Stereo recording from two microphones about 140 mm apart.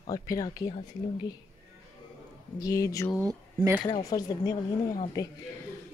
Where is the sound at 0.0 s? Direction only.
25° left (ahead or behind).